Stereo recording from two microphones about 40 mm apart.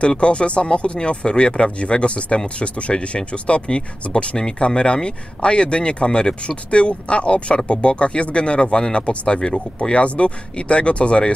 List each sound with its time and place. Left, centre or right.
0.2 s speech: left